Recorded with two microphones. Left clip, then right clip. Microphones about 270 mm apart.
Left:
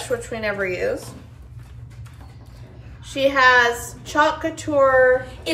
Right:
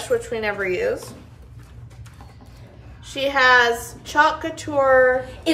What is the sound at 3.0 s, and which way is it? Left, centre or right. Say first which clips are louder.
A woman's voice: left 1 dB; centre.